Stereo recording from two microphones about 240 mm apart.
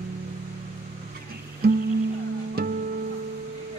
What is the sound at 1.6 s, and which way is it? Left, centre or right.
Music, right.